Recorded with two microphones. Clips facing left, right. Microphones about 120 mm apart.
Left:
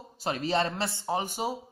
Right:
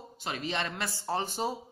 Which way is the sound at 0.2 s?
40° left (ahead or behind).